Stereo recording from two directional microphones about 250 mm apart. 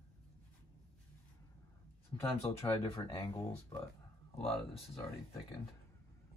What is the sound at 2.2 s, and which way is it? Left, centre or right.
Speech, centre.